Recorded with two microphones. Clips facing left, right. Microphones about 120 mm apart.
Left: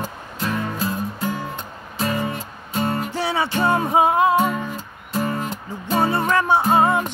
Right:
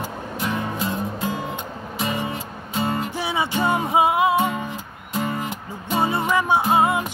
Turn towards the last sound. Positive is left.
turn(degrees=-15)  # may be behind; listen again after turning